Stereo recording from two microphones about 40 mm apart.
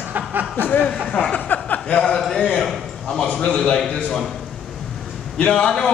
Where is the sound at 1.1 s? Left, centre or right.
Left.